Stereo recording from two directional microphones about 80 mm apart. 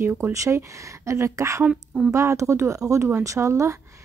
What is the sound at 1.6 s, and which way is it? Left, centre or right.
Speech, centre.